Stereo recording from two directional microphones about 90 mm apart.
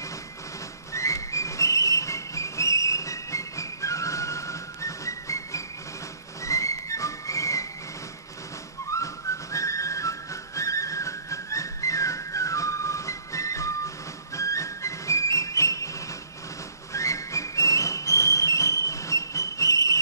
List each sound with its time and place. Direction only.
0.9 s whistle: 35° left (ahead or behind)
8.9 s whistling: 35° left (ahead or behind)
16.9 s music: 35° left (ahead or behind)